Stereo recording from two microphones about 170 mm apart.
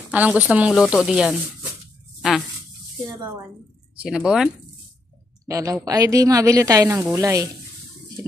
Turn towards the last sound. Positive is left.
turn(degrees=-20)  # may be behind; listen again after turning